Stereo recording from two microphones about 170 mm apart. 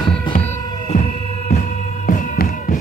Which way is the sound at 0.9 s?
60° left (ahead or behind).